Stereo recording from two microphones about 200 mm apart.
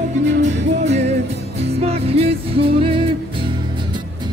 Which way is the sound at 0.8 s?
35° right (ahead or behind).